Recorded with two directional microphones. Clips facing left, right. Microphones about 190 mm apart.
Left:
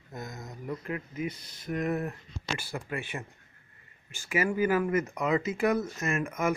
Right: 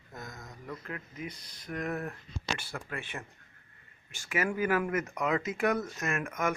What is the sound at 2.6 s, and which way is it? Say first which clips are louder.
Speech: left 4 dB; 10° left (ahead or behind).